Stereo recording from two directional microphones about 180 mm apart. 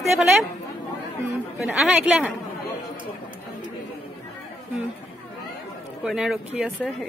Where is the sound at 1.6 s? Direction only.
Centre (ahead or behind).